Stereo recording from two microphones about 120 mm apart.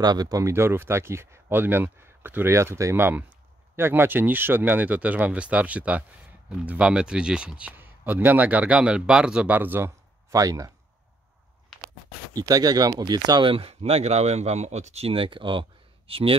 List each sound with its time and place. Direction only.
0.0 s a man's voice: 35° right (ahead or behind)
11.7 s a sound: 5° left (ahead or behind)
12.4 s speech: 30° right (ahead or behind); by 16.3 s 50° right (ahead or behind)